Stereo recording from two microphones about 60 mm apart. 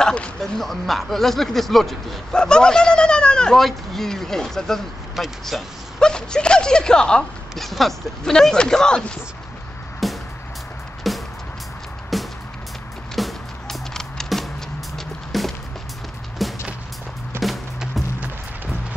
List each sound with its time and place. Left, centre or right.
0.0 s speech: centre
0.5 s speech: centre
3.5 s speech: centre
5.9 s speech: centre
7.5 s speech: centre
10.0 s music: centre